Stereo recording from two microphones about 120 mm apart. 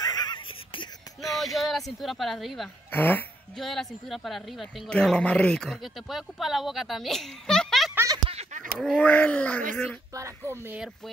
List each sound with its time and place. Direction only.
0.0 s a sound: 35° left (ahead or behind)
1.4 s speech: centre (ahead or behind)
2.9 s speech: 15° left (ahead or behind)
3.5 s speech: centre (ahead or behind)
8.3 s a sound: 60° right (ahead or behind)
8.7 s speech: 5° left (ahead or behind)
10.1 s a child's voice: 25° right (ahead or behind)